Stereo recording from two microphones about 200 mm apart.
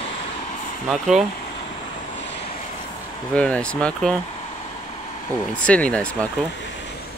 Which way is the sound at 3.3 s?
5° left (ahead or behind).